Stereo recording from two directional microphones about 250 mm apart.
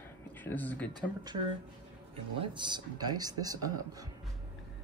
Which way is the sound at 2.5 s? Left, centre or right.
Centre.